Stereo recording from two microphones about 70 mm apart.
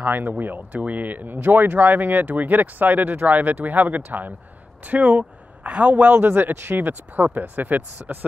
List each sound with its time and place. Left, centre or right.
0.0 s a man's voice: right
6.2 s speech: right